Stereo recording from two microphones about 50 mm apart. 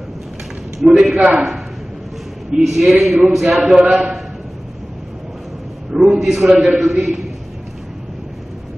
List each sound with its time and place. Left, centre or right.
0.7 s speech: centre
1.1 s a man's voice: right
2.5 s a man's voice: centre
6.1 s speech: centre
6.5 s a man's voice: right
6.8 s speech: centre